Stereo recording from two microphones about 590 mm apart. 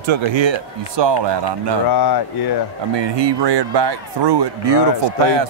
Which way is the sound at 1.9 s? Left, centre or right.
Left.